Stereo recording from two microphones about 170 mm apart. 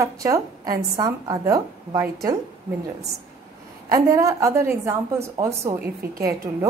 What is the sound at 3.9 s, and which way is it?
A woman's voice, 20° right (ahead or behind).